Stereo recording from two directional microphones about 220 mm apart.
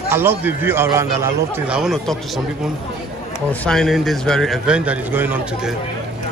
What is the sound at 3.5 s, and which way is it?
Speech, centre (ahead or behind).